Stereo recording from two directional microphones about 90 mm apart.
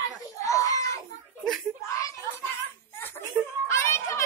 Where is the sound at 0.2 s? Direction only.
35° left (ahead or behind).